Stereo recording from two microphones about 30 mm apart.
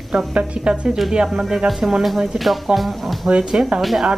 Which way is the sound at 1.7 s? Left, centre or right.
Centre.